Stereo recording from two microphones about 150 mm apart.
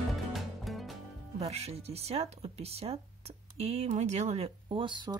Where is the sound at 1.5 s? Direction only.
45° right (ahead or behind).